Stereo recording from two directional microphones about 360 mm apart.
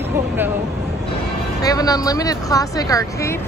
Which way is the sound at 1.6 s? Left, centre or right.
Centre.